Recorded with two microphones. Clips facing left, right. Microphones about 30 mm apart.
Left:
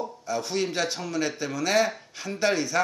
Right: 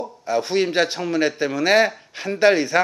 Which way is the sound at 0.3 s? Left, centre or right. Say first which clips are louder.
Right 8 dB; right.